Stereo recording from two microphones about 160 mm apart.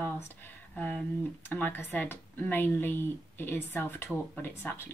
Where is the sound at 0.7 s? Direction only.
10° left (ahead or behind).